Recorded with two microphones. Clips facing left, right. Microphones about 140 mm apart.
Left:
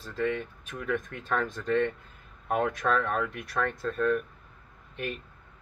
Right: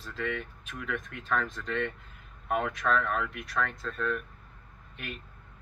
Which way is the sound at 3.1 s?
40° left (ahead or behind).